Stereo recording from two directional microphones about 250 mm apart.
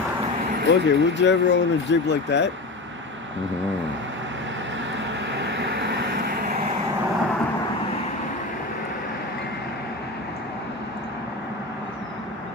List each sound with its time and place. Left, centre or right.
0.7 s speech: left
5.4 s vehicle: right